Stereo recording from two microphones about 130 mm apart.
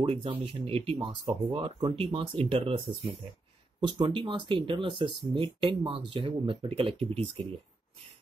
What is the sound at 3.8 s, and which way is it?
Speech, 35° right (ahead or behind).